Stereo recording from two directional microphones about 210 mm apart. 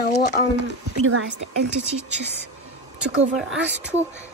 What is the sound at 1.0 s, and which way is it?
Speech, 70° right (ahead or behind).